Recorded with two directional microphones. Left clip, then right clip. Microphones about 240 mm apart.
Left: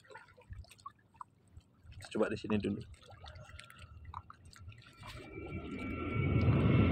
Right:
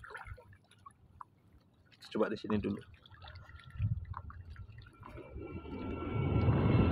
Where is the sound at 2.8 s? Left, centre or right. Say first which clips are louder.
Left 1 dB; left.